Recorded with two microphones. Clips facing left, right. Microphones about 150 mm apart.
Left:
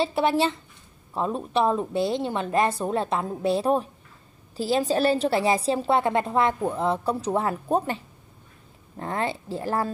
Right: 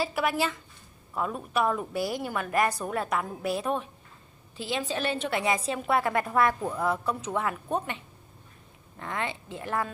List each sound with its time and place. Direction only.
0.0 s a woman's voice: 30° left (ahead or behind)